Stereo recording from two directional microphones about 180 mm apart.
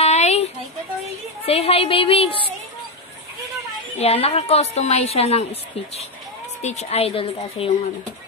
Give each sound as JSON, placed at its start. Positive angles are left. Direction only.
{"t": 0.0, "sound": "a sound", "side_deg": 40}
{"t": 1.4, "sound": "a woman's voice", "side_deg": 35}
{"t": 4.0, "sound": "a woman's voice", "side_deg": 35}